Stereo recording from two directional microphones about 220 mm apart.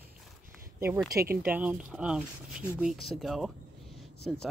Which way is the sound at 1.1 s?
45° right (ahead or behind).